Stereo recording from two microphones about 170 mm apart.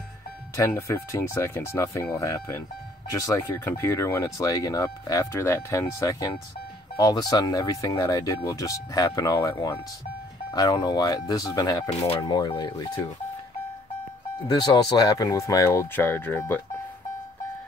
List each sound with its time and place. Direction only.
0.6 s speech: 15° left (ahead or behind)
14.5 s speech: 25° left (ahead or behind)